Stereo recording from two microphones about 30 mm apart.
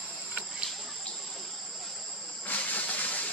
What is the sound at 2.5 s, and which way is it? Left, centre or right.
Steam, left.